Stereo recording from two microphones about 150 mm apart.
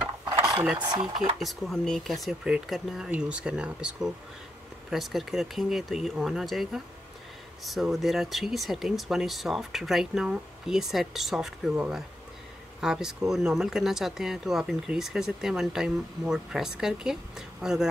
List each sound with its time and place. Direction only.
0.0 s a sound: 20° right (ahead or behind)
0.7 s speech: 30° right (ahead or behind)
1.4 s speech: centre (ahead or behind)